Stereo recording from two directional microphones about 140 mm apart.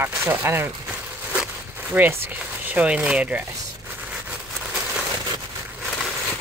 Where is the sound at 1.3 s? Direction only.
10° right (ahead or behind).